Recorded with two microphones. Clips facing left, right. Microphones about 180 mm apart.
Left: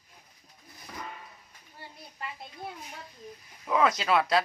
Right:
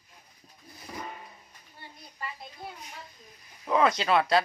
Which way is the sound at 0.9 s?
15° right (ahead or behind).